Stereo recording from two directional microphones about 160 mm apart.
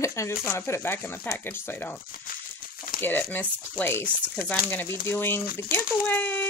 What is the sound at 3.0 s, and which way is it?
Speech, 10° left (ahead or behind).